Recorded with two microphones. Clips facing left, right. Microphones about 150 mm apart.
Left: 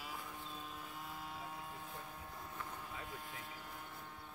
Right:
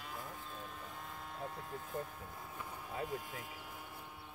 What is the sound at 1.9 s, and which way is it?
Vehicle, 45° right (ahead or behind).